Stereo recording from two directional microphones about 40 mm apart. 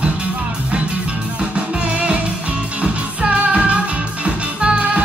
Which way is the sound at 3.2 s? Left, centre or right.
Right.